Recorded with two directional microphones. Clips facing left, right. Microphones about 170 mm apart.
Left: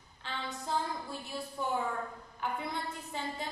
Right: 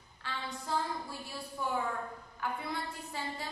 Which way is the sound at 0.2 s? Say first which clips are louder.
Even; 20° left (ahead or behind).